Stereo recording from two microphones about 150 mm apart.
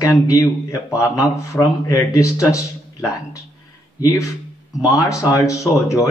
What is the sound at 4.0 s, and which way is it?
A man's voice, 25° left (ahead or behind).